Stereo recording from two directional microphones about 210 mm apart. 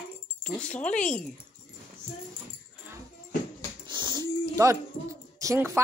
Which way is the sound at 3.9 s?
20° right (ahead or behind).